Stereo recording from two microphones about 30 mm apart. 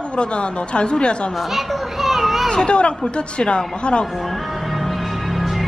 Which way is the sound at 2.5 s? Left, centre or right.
Left.